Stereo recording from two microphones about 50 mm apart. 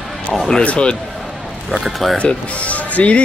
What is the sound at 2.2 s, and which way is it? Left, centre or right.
Speech, left.